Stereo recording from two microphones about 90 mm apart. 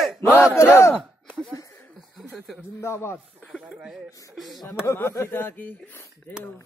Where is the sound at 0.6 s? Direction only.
30° left (ahead or behind).